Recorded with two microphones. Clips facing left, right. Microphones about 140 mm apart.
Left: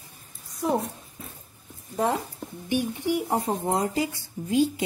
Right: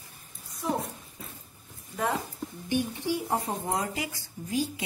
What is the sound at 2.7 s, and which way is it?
Speech, 15° left (ahead or behind).